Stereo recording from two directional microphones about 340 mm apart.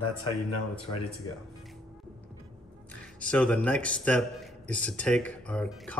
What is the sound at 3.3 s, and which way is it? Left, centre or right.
A man's voice, centre.